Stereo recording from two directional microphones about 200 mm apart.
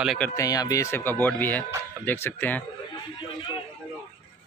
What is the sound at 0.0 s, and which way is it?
Speech, centre (ahead or behind).